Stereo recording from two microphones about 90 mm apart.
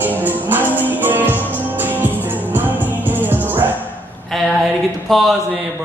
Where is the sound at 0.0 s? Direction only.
20° right (ahead or behind).